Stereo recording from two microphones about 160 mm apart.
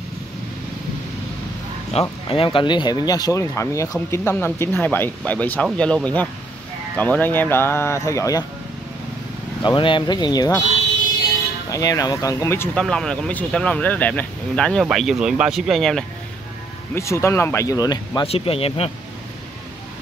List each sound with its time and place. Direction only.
1.9 s speech: 40° left (ahead or behind); by 8.5 s 20° left (ahead or behind)
9.6 s speech: 30° left (ahead or behind)
11.7 s speech: 20° left (ahead or behind)
12.7 s speech: 5° left (ahead or behind)
16.9 s speech: 15° left (ahead or behind)
18.2 s speech: 35° left (ahead or behind)